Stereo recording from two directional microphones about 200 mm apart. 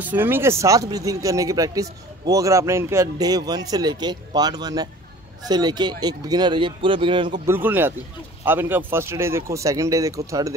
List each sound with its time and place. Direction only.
0.0 s speech: 10° right (ahead or behind); by 7.3 s 25° right (ahead or behind)
7.4 s speech: 10° right (ahead or behind)